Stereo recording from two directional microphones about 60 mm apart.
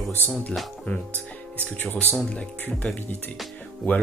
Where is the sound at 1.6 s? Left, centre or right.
Left.